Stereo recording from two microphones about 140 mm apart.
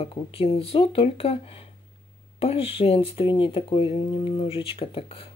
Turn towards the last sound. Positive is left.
turn(degrees=40)  # may be behind; listen again after turning